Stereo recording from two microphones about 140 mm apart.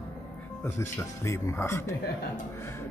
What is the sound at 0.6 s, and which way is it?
Speech, 20° left (ahead or behind).